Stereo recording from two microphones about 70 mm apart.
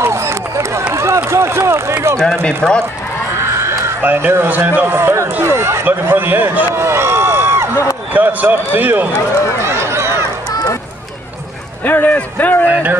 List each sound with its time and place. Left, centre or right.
0.0 s a sound: right
0.9 s run: right
2.4 s speech: centre
3.3 s a sound: right
4.0 s a man's voice: right
5.9 s speech: right
8.1 s a man's voice: right
9.6 s run: right
11.8 s speech: left